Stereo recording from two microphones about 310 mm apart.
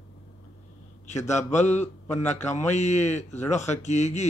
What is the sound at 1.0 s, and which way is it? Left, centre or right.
A man's voice, left.